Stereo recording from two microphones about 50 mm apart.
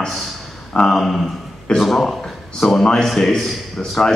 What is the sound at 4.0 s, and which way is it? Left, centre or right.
Speech, centre.